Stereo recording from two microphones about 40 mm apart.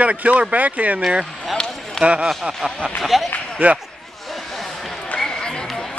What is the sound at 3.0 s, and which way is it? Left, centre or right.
Speech, centre.